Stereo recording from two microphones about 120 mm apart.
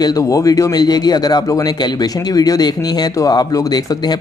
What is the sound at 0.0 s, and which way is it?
A man's voice, 30° left (ahead or behind).